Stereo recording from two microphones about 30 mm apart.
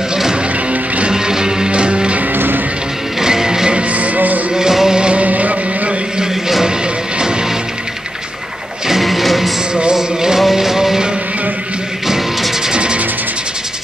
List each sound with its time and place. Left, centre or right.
1.1 s music: right
1.7 s music: right
3.2 s music: centre
3.9 s music: right
4.6 s music: centre
5.2 s music: right
9.0 s music: centre
9.9 s music: centre
12.1 s music: centre
12.7 s music: right